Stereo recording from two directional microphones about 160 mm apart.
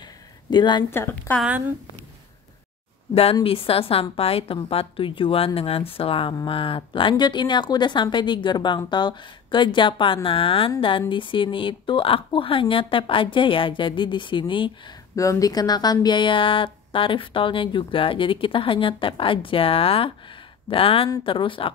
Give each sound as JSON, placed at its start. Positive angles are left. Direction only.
{"t": 0.5, "sound": "speech", "side_deg": 30}
{"t": 0.8, "sound": "a woman's voice", "side_deg": 15}
{"t": 3.4, "sound": "a woman's voice", "side_deg": 35}
{"t": 15.1, "sound": "a woman's voice", "side_deg": 20}